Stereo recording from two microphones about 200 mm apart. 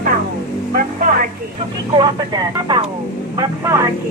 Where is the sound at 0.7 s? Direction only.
45° right (ahead or behind).